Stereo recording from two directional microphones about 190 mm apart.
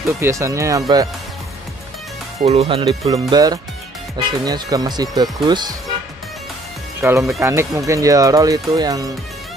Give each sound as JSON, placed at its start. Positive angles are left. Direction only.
{"t": 0.2, "sound": "speech", "side_deg": -15}
{"t": 2.4, "sound": "speech", "side_deg": -35}
{"t": 7.0, "sound": "speech", "side_deg": -15}